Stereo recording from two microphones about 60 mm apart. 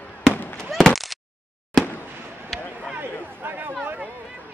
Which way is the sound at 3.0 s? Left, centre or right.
Right.